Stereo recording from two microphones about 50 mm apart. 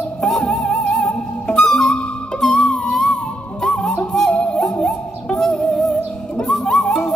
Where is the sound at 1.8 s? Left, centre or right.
Centre.